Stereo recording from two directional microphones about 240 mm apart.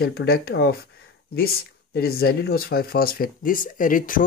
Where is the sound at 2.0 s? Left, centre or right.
Left.